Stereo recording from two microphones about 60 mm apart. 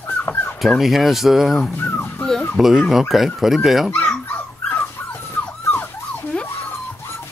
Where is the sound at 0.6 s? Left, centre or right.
Centre.